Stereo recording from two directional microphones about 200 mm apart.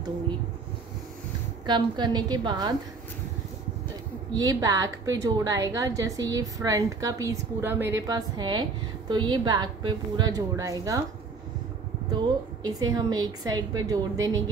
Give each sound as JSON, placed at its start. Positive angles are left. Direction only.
{"t": 1.7, "sound": "a woman's voice", "side_deg": -20}
{"t": 4.4, "sound": "a woman's voice", "side_deg": -20}
{"t": 12.6, "sound": "a woman's voice", "side_deg": -20}